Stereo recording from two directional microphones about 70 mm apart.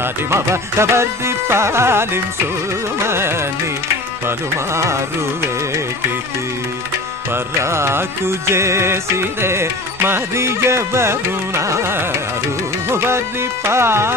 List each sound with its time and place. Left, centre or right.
0.0 s music: right
4.7 s music: right
7.6 s music: right